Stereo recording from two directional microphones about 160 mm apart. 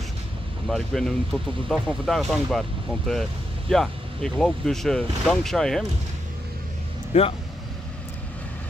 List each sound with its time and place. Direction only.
0.7 s speech: 5° left (ahead or behind)
7.1 s speech: 40° left (ahead or behind)